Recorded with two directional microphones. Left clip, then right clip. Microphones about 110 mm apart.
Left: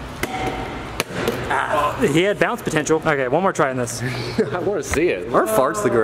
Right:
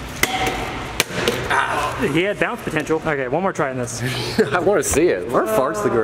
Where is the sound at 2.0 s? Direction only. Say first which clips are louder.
Left 2 dB; 35° left (ahead or behind).